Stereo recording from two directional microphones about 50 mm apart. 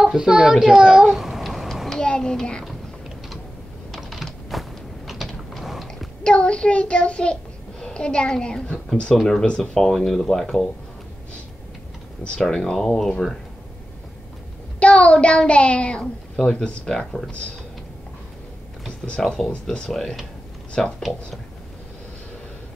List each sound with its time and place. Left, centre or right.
0.0 s a child's voice: centre
1.0 s babbling: centre
2.0 s a child's voice: centre
3.9 s mechanisms: centre
6.2 s a child's voice: left
12.2 s a child's voice: centre
14.8 s a child's voice: left
18.9 s speech: centre